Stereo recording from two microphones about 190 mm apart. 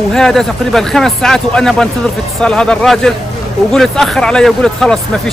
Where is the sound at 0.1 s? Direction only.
Centre (ahead or behind).